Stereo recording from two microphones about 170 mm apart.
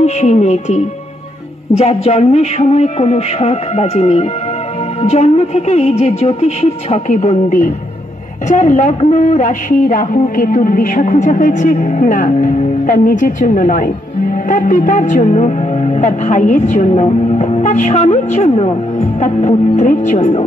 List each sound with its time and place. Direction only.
0.0 s a woman's voice: 40° left (ahead or behind)